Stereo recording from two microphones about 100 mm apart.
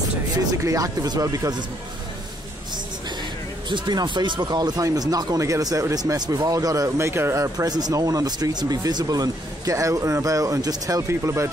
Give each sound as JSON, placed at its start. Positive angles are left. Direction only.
{"t": 0.4, "sound": "speech", "side_deg": -35}
{"t": 3.6, "sound": "speech", "side_deg": -50}